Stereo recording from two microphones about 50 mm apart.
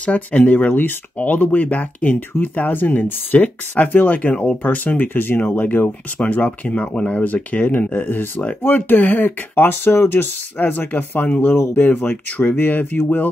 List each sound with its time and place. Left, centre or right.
0.0 s speech: left
6.1 s speech: left
7.6 s speech: left
11.5 s speech: left
11.8 s speech: left